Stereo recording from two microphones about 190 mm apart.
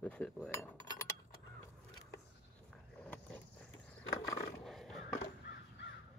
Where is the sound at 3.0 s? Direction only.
5° left (ahead or behind).